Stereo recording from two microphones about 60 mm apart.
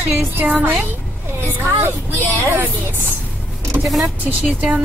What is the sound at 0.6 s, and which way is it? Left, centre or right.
Speech, right.